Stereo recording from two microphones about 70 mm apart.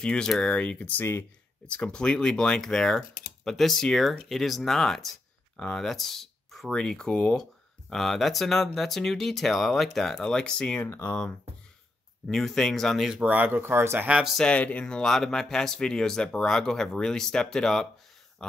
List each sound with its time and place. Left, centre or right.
0.0 s speech: centre
0.8 s speech: left
1.7 s speech: centre
10.8 s speech: left
12.3 s speech: centre
13.2 s speech: right
13.6 s speech: right
14.4 s speech: centre
15.0 s speech: centre